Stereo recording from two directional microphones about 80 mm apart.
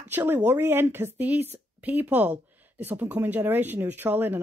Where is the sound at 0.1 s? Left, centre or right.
Right.